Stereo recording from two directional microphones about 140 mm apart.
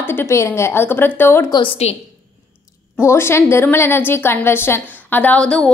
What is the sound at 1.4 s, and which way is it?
Speech, 35° left (ahead or behind).